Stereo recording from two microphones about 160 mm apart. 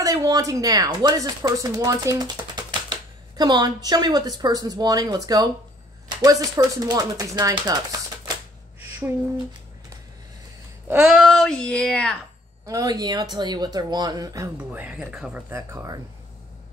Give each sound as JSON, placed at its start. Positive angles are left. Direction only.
{"t": 0.0, "sound": "speech", "side_deg": -20}
{"t": 10.9, "sound": "speech", "side_deg": -5}
{"t": 12.6, "sound": "speech", "side_deg": -25}
{"t": 14.7, "sound": "speech", "side_deg": -10}
{"t": 15.5, "sound": "speech", "side_deg": -20}